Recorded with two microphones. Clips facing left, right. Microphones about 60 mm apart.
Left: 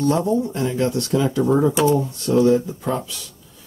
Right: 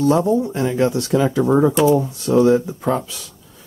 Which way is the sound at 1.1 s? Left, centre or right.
Right.